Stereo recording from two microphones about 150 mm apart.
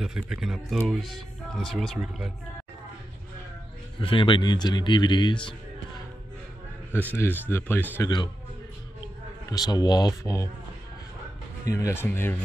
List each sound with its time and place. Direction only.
0.0 s speech: 5° right (ahead or behind)
4.0 s a man's voice: 35° left (ahead or behind)
6.9 s a man's voice: 15° right (ahead or behind)
7.2 s a man's voice: 15° left (ahead or behind)
8.0 s a man's voice: 30° left (ahead or behind)
9.5 s a man's voice: 25° left (ahead or behind)
11.7 s a man's voice: 20° left (ahead or behind)